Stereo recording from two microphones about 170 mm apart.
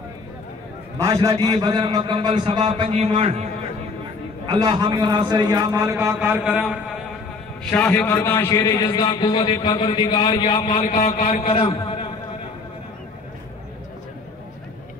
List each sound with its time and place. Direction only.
0.9 s a man's voice: 20° right (ahead or behind); by 3.4 s 35° right (ahead or behind)
4.5 s a man's voice: 25° right (ahead or behind)
5.9 s a sound: 10° right (ahead or behind)
6.6 s a man's voice: centre (ahead or behind)
7.7 s a man's voice: 10° left (ahead or behind); by 10.8 s 30° left (ahead or behind)
10.8 s a man's voice: 50° left (ahead or behind)
11.5 s a sound: 35° left (ahead or behind)